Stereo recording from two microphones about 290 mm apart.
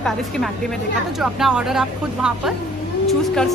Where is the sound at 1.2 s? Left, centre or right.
Centre.